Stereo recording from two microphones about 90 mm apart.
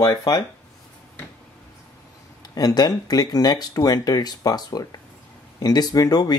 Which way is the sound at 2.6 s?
45° left (ahead or behind).